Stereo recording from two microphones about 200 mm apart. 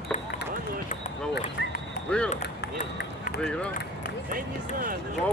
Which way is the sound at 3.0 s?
55° left (ahead or behind).